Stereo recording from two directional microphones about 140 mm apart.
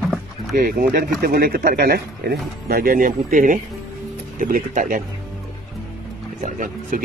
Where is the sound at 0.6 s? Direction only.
90° right.